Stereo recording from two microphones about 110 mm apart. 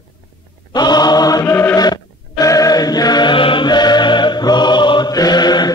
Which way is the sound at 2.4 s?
35° left (ahead or behind).